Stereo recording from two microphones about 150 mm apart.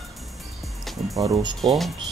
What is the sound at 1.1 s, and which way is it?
Speech, 25° right (ahead or behind).